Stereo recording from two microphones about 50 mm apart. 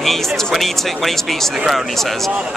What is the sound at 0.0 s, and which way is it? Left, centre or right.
Speech, centre.